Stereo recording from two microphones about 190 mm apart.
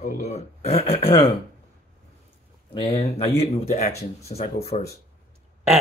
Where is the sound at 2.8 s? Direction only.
30° left (ahead or behind).